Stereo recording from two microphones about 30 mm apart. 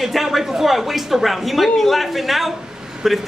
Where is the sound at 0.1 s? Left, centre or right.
Centre.